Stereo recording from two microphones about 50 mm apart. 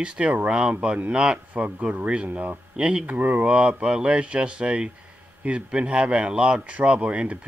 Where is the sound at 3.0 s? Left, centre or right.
Right.